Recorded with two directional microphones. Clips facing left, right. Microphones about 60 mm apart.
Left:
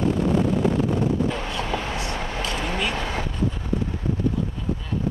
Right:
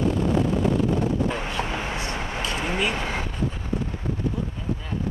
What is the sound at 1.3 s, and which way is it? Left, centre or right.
Vehicle, right.